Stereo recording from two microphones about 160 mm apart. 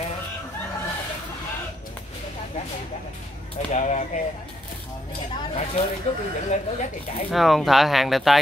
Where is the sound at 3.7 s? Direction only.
45° left (ahead or behind).